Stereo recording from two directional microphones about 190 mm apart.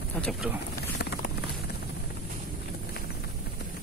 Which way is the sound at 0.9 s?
60° left (ahead or behind).